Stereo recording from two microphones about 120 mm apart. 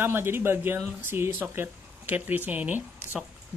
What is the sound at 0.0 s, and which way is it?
Speech, 20° right (ahead or behind).